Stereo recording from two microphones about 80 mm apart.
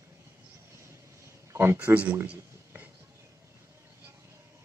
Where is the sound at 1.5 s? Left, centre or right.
Right.